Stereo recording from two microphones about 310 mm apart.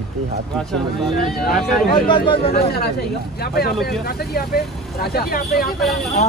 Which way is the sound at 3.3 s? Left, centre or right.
Left.